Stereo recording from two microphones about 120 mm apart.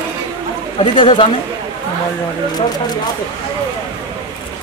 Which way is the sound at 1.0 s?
45° left (ahead or behind).